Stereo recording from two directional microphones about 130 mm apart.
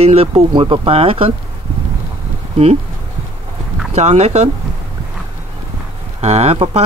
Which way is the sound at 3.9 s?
55° right (ahead or behind).